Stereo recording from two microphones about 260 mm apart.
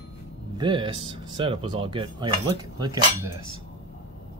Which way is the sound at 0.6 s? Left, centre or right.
Centre.